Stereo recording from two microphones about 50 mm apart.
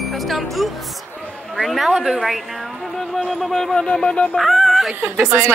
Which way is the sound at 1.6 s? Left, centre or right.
Centre.